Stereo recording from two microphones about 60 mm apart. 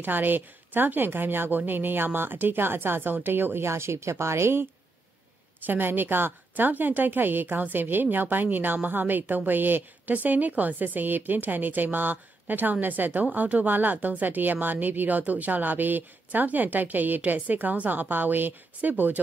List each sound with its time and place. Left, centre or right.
0.0 s a woman's voice: right
5.7 s a woman's voice: right